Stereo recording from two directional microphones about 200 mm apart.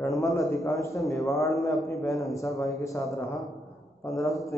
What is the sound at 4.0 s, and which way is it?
Speech, 15° left (ahead or behind).